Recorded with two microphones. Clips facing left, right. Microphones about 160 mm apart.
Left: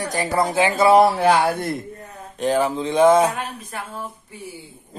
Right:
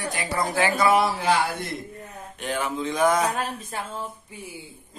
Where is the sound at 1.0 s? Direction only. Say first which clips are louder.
Left 6 dB; 65° left (ahead or behind).